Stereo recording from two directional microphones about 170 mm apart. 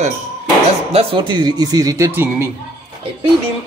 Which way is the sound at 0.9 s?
30° right (ahead or behind).